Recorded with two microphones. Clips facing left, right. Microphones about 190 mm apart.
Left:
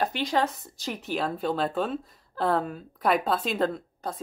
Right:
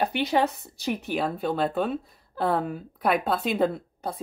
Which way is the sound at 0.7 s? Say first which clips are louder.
Right 7 dB; 60° right (ahead or behind).